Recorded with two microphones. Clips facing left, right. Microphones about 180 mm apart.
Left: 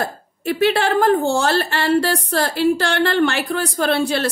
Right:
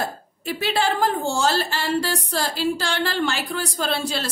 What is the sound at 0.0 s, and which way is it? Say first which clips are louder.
A woman's voice: left 4 dB; 60° left (ahead or behind).